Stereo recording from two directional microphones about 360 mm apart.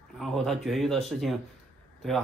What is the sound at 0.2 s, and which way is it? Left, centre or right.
Speech, centre.